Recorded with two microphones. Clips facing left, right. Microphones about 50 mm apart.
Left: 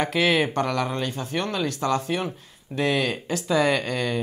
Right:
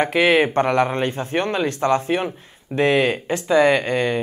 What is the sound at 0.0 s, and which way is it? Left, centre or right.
Speech, right.